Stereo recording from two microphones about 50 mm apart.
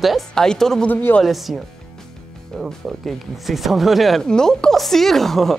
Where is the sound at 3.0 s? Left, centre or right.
Centre.